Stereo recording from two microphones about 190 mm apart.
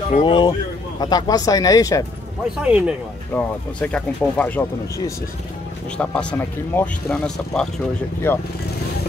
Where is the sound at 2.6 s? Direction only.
5° right (ahead or behind).